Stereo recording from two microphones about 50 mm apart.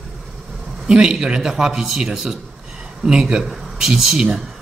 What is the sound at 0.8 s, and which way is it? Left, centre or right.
A man's voice, centre.